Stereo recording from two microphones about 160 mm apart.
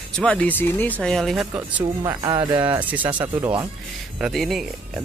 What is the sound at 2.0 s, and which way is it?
Speech, 20° right (ahead or behind).